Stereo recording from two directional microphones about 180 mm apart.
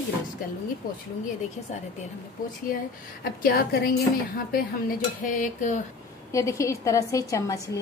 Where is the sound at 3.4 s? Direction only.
60° left (ahead or behind).